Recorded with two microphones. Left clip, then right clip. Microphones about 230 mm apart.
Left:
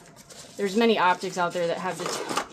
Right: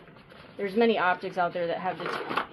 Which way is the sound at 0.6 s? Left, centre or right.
Left.